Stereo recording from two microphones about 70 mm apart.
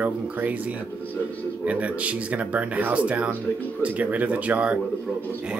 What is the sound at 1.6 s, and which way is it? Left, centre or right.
Speech, centre.